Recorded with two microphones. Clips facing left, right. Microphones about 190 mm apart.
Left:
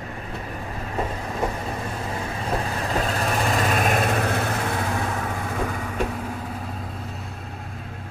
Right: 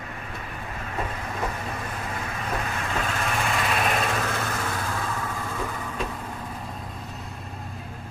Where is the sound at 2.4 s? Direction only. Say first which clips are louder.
Left 4 dB; 30° left (ahead or behind).